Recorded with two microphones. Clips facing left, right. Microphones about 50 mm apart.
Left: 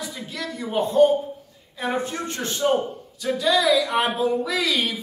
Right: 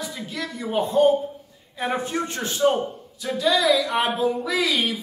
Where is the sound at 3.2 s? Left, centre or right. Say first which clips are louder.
Left 1 dB; centre.